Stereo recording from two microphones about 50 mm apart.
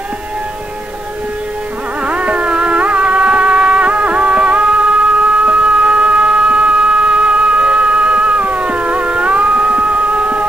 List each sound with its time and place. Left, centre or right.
2.0 s music: right